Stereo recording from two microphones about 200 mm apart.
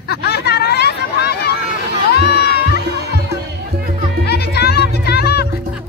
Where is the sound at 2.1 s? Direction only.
55° left (ahead or behind).